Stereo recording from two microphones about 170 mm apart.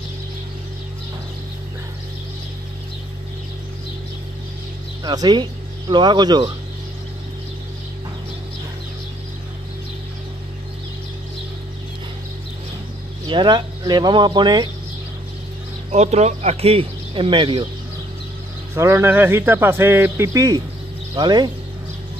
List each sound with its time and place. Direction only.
5.0 s speech: 25° right (ahead or behind)
13.3 s speech: 25° right (ahead or behind)
15.9 s speech: 40° right (ahead or behind)
18.8 s speech: 15° right (ahead or behind)